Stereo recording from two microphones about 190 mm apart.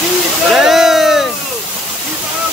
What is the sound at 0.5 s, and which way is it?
Speech, 5° right (ahead or behind).